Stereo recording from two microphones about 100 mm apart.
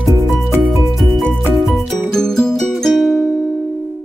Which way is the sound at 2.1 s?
5° left (ahead or behind).